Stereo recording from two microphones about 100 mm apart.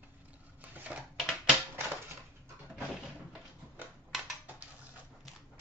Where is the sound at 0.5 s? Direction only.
15° right (ahead or behind).